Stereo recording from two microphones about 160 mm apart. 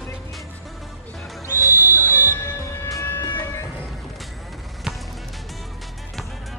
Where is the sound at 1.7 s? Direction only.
15° right (ahead or behind).